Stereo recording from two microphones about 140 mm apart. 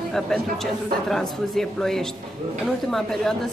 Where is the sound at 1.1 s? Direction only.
5° left (ahead or behind).